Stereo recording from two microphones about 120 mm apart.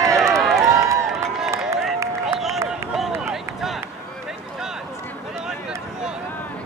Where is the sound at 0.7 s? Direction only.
25° right (ahead or behind).